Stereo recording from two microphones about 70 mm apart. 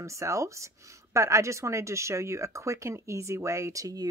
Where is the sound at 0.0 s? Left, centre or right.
Right.